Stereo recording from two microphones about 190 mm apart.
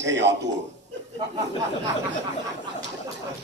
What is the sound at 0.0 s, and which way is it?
Speech, 70° right (ahead or behind).